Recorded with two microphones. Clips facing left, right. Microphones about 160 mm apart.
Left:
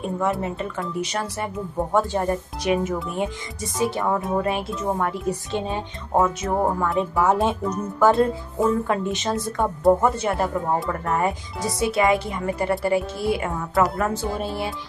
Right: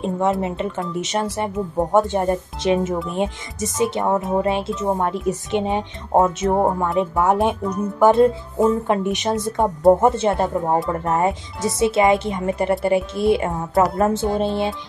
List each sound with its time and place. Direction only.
0.0 s speech: 20° right (ahead or behind)